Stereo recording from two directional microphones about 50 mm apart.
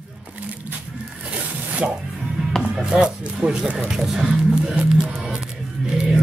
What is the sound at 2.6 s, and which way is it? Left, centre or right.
Music, right.